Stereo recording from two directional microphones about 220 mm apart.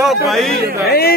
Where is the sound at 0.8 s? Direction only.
45° left (ahead or behind).